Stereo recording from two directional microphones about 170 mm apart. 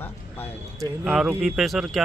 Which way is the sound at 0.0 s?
10° left (ahead or behind).